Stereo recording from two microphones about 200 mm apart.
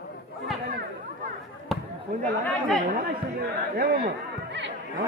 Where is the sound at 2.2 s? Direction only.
5° left (ahead or behind).